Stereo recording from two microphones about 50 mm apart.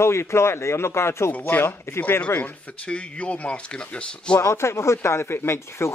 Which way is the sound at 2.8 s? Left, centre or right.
Left.